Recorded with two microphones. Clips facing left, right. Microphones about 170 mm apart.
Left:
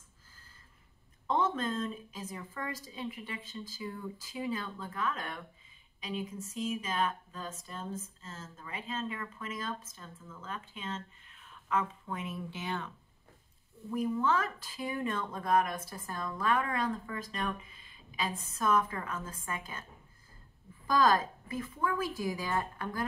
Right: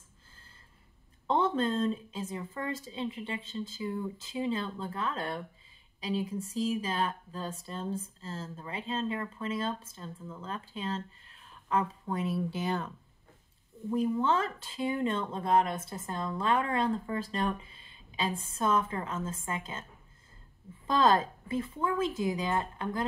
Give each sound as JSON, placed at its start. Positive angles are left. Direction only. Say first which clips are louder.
{"t": 1.2, "sound": "speech", "louder": "right 3 dB", "side_deg": -30}
{"t": 13.8, "sound": "speech", "louder": "right 3 dB", "side_deg": -25}
{"t": 20.8, "sound": "speech", "louder": "right 2 dB", "side_deg": -25}